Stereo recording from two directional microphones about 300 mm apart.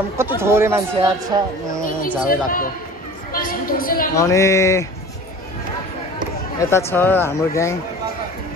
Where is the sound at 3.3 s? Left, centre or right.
Left.